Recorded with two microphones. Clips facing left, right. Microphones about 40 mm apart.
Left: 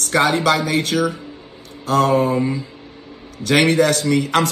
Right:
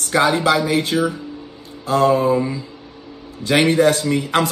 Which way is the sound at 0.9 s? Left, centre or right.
Centre.